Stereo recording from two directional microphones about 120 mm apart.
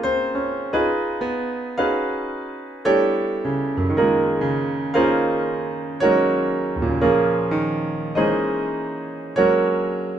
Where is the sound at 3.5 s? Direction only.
Centre (ahead or behind).